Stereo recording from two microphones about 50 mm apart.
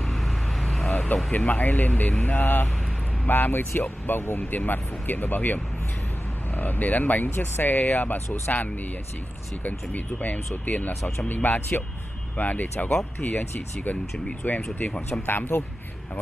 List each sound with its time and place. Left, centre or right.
0.0 s vehicle: centre
1.0 s speech: left
10.9 s speech: left
11.2 s speech: left